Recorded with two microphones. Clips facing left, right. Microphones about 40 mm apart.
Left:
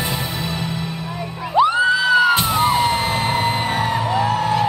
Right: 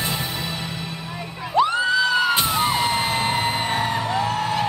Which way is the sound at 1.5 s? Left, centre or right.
Centre.